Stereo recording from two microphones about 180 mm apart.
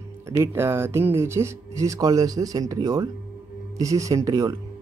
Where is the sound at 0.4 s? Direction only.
15° right (ahead or behind).